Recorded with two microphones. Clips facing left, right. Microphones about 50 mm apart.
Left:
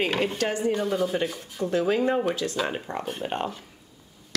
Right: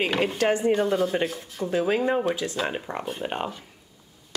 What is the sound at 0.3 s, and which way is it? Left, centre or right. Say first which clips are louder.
Speech: right 4 dB; right.